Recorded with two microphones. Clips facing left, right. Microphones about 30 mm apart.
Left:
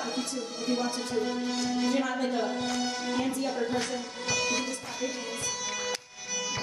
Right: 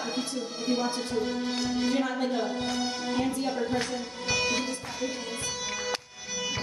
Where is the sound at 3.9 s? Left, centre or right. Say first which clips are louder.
Right 1 dB; centre.